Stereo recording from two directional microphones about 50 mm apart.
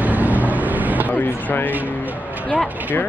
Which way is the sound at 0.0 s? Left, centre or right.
Right.